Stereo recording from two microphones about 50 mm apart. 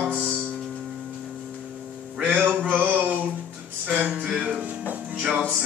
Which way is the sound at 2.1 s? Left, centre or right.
Right.